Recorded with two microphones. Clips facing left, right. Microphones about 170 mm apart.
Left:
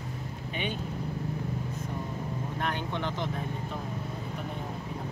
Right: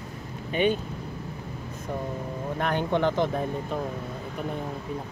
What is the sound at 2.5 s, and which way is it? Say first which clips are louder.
Speech: right 9 dB; 55° right (ahead or behind).